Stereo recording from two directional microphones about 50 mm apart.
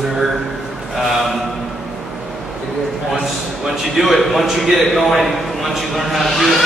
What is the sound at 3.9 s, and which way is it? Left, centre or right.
A man's voice, centre.